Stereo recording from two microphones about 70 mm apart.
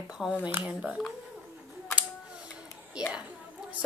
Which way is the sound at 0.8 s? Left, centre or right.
Centre.